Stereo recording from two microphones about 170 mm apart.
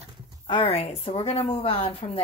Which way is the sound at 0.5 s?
30° left (ahead or behind).